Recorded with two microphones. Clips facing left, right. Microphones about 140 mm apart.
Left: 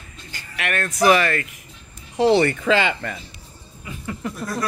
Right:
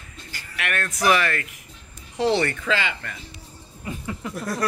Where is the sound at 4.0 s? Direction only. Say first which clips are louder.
Left 5 dB; 5° right (ahead or behind).